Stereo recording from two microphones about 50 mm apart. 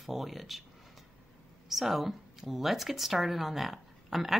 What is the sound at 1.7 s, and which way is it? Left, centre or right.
Speech, centre.